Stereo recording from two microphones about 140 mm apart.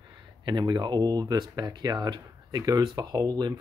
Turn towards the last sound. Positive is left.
turn(degrees=-30)  # may be behind; listen again after turning